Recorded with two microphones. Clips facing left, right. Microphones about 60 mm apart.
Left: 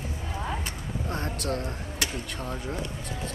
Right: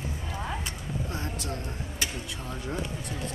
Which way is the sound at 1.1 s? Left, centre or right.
Left.